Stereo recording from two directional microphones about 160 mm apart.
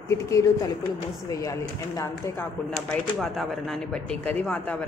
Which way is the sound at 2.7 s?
Centre (ahead or behind).